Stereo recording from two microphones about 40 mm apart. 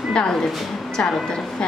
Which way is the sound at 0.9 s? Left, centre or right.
Centre.